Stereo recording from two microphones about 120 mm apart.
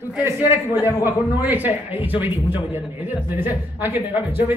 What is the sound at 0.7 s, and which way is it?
Speech, 25° left (ahead or behind).